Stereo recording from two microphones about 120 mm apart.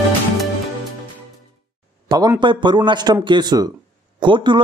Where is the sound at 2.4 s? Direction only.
40° right (ahead or behind).